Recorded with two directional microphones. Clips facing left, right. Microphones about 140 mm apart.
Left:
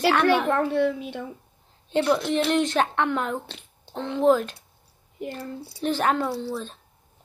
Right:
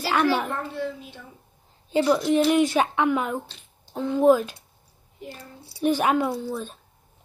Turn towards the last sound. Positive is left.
turn(degrees=-15)  # may be behind; listen again after turning